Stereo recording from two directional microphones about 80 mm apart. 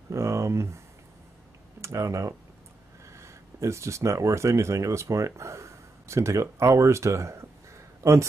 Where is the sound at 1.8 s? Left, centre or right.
Right.